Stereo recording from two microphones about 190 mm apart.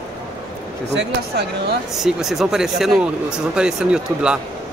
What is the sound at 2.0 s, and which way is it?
A man's voice, centre (ahead or behind).